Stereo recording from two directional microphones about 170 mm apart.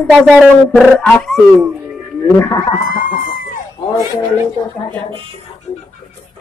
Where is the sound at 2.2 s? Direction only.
20° left (ahead or behind).